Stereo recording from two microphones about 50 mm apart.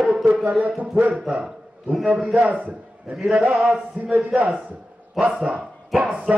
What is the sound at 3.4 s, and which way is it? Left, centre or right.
A man's voice, right.